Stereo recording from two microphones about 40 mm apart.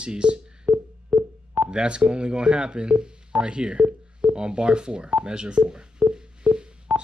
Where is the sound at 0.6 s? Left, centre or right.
Right.